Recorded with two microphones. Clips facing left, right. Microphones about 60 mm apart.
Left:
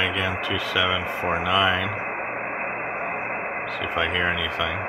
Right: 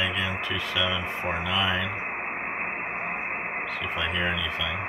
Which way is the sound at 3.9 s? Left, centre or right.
Left.